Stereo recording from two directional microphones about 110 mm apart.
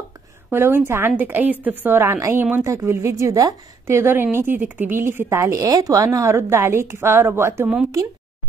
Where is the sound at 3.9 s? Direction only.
20° right (ahead or behind).